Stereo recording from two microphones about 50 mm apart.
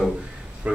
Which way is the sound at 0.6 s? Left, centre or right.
Right.